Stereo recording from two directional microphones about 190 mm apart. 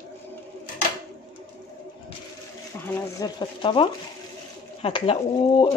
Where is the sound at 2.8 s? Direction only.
20° left (ahead or behind).